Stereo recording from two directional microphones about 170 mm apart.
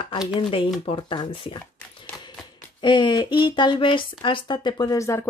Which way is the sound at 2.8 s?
25° left (ahead or behind).